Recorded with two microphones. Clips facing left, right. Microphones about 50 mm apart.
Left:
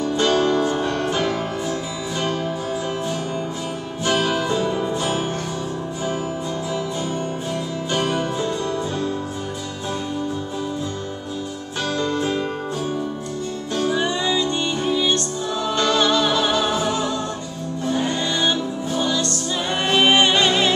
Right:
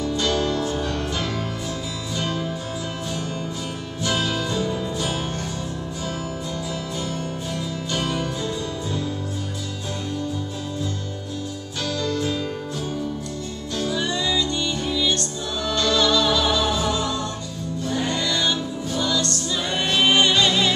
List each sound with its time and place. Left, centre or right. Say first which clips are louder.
0.0 s music: left 4 dB; left
4.0 s music: left 4 dB; left
7.9 s music: left 4 dB; left
11.9 s music: left 3 dB; left
13.7 s music: left 3 dB; left